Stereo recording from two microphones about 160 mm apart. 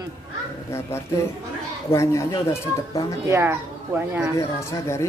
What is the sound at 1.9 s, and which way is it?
Speech, 20° left (ahead or behind).